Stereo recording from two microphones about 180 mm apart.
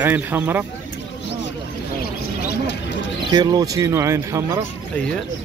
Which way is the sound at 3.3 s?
25° right (ahead or behind).